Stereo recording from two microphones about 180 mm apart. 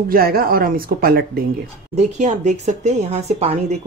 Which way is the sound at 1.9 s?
40° right (ahead or behind).